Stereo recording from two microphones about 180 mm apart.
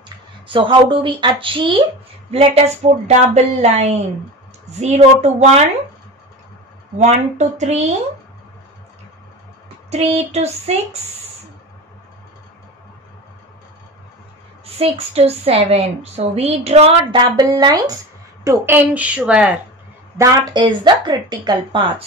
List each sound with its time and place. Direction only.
0.5 s a woman's voice: 30° right (ahead or behind)
7.0 s a woman's voice: 40° right (ahead or behind)
9.8 s a woman's voice: 35° right (ahead or behind)
14.8 s a woman's voice: 35° right (ahead or behind)
17.4 s a woman's voice: 20° right (ahead or behind)
20.2 s speech: 20° right (ahead or behind)